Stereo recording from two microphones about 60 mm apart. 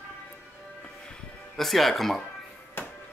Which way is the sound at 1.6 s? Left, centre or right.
Centre.